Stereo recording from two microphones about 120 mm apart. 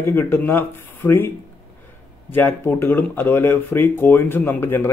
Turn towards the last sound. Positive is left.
turn(degrees=20)  # may be behind; listen again after turning